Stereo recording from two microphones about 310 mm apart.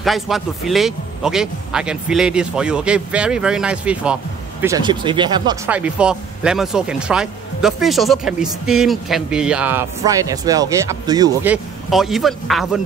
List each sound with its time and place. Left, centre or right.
0.0 s speech: centre